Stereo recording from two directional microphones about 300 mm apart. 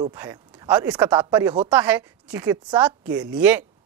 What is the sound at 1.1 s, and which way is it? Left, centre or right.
Speech, centre.